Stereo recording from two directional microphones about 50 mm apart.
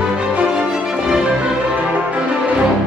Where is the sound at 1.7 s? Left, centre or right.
Right.